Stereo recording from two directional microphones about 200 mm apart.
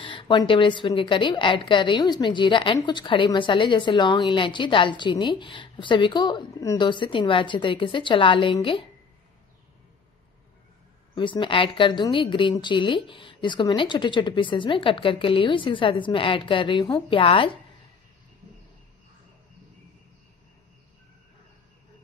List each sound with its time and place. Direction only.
0.0 s a woman's voice: 25° left (ahead or behind)
11.1 s a woman's voice: 25° left (ahead or behind)